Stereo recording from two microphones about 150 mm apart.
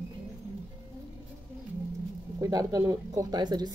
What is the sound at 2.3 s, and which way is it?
Speech, 25° right (ahead or behind).